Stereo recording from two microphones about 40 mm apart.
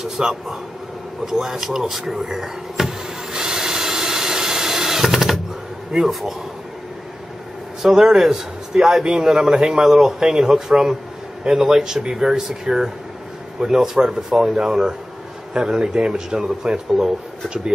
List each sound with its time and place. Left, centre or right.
0.0 s a man's voice: centre
3.3 s wood: centre
5.9 s a man's voice: centre
7.8 s a man's voice: centre